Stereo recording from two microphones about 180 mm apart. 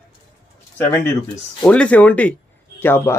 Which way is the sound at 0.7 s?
10° left (ahead or behind).